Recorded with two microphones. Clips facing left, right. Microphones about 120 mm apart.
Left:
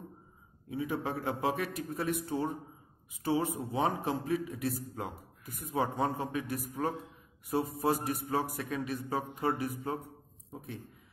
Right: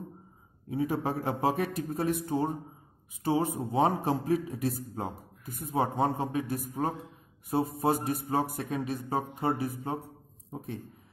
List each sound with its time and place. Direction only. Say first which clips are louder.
0.7 s a man's voice: right 4 dB; 40° right (ahead or behind)